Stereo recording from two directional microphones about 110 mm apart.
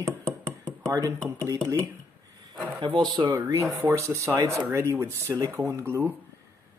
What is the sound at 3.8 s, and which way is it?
Speech, 30° right (ahead or behind).